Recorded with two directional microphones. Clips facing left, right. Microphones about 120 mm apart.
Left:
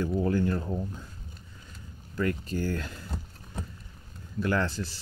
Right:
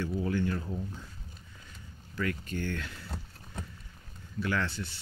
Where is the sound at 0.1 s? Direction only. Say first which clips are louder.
Left 4 dB; 45° left (ahead or behind).